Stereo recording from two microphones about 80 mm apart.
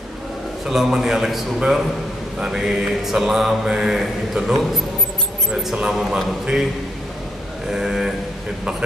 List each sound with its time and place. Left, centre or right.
0.7 s mantra: centre
7.7 s mantra: centre